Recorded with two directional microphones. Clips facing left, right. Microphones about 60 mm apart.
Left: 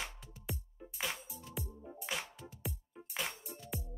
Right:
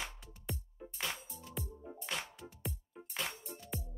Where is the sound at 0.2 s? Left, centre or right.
Centre.